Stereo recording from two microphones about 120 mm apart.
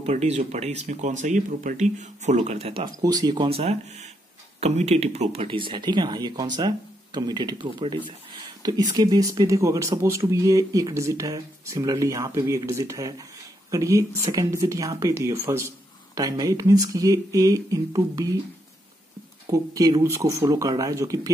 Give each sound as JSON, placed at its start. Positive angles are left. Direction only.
{"t": 0.0, "sound": "speech", "side_deg": -65}
{"t": 3.0, "sound": "speech", "side_deg": -30}
{"t": 3.4, "sound": "speech", "side_deg": -60}
{"t": 19.5, "sound": "speech", "side_deg": -30}